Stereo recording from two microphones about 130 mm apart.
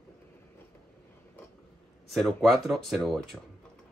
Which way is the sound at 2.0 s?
Centre (ahead or behind).